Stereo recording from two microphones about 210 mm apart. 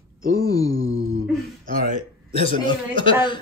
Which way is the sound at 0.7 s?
70° right (ahead or behind).